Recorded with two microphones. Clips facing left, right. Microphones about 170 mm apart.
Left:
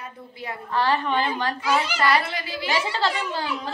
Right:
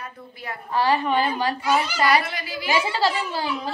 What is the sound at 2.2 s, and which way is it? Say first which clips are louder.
Speech: left 1 dB; 25° left (ahead or behind).